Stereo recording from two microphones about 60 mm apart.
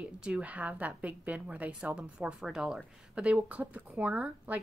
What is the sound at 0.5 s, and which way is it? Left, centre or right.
A woman's voice, right.